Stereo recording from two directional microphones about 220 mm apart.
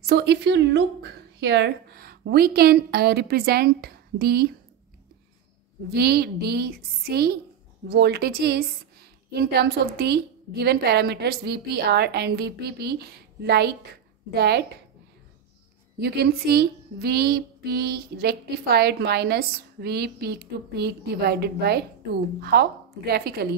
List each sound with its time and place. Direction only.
0.0 s a woman's voice: 45° right (ahead or behind)
5.9 s speech: 45° right (ahead or behind)
16.0 s speech: 45° right (ahead or behind)